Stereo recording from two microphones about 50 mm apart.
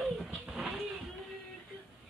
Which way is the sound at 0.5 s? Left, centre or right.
Centre.